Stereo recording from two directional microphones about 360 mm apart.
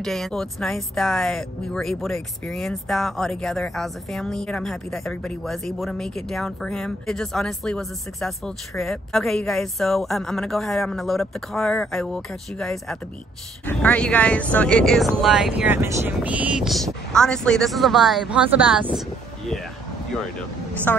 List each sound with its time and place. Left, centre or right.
0.0 s speech: centre